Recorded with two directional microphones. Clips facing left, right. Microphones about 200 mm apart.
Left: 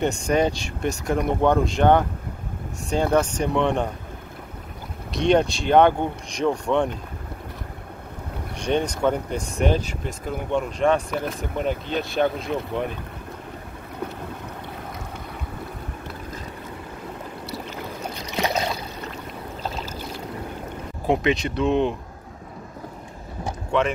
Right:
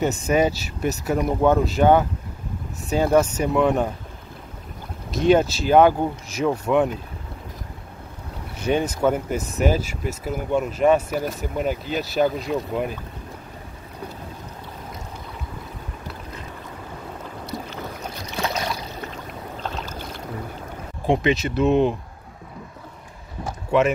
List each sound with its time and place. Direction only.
0.0 s speech: 5° right (ahead or behind)
5.1 s speech: 5° right (ahead or behind)
8.5 s speech: 5° right (ahead or behind)
18.3 s boat: 20° left (ahead or behind)
21.1 s speech: centre (ahead or behind)
23.7 s speech: 5° right (ahead or behind)